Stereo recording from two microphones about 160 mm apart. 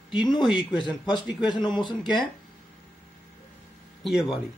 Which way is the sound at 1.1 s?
30° left (ahead or behind).